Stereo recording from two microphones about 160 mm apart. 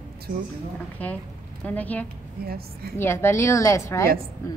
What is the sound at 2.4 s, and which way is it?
Speech, 70° right (ahead or behind).